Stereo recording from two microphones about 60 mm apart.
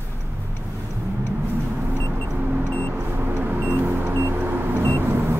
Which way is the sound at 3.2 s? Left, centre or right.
Right.